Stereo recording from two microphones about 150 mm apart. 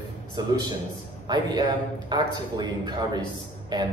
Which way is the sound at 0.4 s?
25° right (ahead or behind).